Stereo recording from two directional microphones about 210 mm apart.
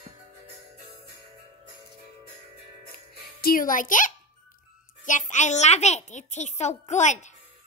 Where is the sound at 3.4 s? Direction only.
40° left (ahead or behind).